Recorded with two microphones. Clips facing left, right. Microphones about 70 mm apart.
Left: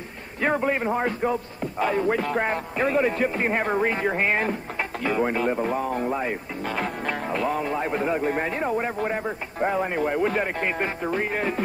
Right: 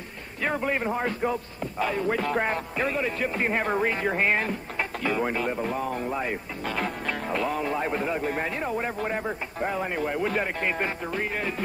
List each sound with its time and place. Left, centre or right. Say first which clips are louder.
0.4 s a sound: left 4 dB; left
0.7 s speech: left 3 dB; centre
2.1 s speech: left 1 dB; centre
2.9 s speech: left 9 dB; left
3.3 s speech: left 2 dB; centre
11.1 s speech: left 4 dB; left